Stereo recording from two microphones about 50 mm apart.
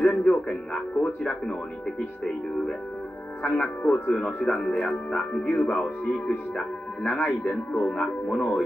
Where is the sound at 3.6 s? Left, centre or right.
Left.